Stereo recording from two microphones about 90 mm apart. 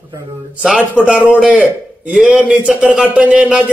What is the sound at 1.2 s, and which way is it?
A man's voice, 10° right (ahead or behind).